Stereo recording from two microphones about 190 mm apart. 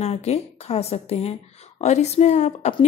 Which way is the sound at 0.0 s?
35° left (ahead or behind).